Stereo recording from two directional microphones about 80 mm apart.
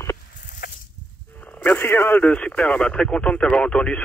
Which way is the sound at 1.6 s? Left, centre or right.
Left.